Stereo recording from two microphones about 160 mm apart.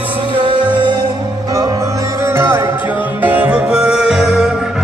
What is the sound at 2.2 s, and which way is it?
Music, 15° right (ahead or behind).